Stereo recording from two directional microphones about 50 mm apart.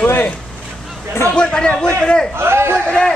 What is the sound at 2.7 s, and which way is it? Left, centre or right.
Speech, centre.